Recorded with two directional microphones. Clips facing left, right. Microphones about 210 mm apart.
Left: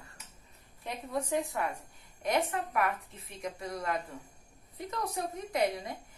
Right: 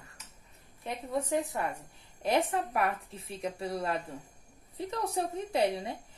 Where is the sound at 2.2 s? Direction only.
30° right (ahead or behind).